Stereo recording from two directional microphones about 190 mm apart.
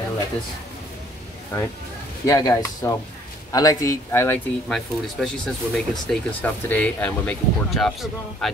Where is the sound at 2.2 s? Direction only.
15° left (ahead or behind).